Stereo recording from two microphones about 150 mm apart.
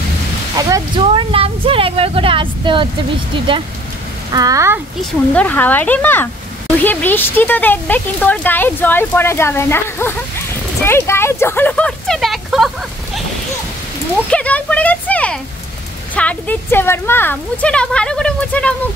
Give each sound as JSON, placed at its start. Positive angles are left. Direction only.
{"t": 0.6, "sound": "speech", "side_deg": -25}
{"t": 1.0, "sound": "speech", "side_deg": -40}
{"t": 4.3, "sound": "speech", "side_deg": -25}
{"t": 5.3, "sound": "speech", "side_deg": 10}
{"t": 14.3, "sound": "a sound", "side_deg": 10}
{"t": 16.2, "sound": "speech", "side_deg": 10}